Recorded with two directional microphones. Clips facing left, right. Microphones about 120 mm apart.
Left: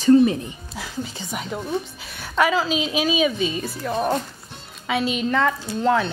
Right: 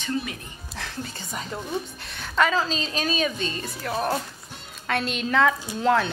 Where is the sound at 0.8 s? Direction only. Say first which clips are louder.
Left 4 dB; 5° left (ahead or behind).